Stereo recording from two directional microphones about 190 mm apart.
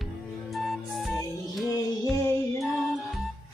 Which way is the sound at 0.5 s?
Centre (ahead or behind).